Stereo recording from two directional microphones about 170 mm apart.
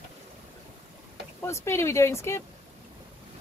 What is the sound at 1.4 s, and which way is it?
Speech, 15° left (ahead or behind).